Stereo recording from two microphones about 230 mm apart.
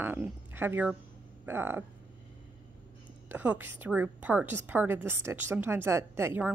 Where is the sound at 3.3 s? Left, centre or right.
Centre.